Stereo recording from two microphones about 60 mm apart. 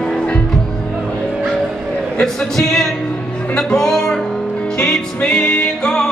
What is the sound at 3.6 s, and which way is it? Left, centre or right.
Music, centre.